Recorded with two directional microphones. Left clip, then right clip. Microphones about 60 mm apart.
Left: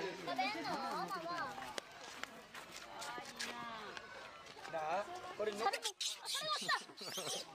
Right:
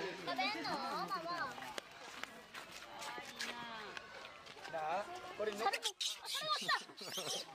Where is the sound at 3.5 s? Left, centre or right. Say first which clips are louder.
Even; right.